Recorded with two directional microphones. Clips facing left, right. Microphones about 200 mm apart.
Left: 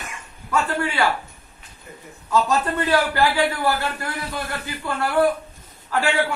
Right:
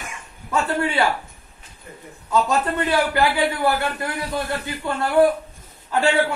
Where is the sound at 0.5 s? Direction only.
25° right (ahead or behind).